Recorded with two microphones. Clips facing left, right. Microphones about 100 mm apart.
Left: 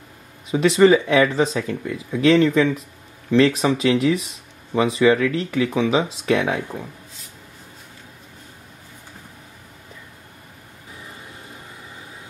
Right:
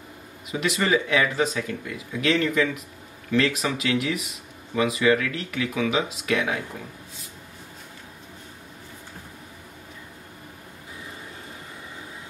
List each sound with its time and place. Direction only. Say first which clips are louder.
0.5 s speech: left 9 dB; 30° left (ahead or behind)